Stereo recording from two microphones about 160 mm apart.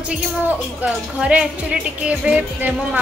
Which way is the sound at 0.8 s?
5° right (ahead or behind).